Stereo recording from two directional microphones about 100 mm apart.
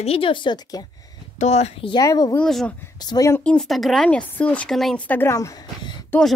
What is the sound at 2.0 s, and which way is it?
Speech, 40° left (ahead or behind).